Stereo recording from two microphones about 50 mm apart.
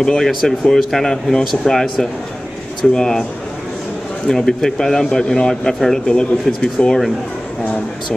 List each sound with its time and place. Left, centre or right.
0.0 s a man's voice: centre
0.3 s a man's voice: centre
4.3 s a man's voice: centre